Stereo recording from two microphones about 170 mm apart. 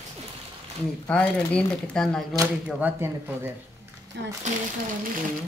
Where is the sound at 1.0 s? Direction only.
5° left (ahead or behind).